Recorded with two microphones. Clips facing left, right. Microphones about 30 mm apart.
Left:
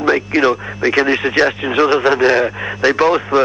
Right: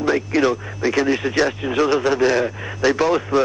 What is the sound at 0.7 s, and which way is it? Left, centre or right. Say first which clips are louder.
Speech: left 4 dB; left.